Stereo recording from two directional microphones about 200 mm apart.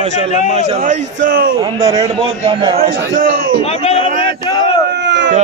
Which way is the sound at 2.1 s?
25° right (ahead or behind).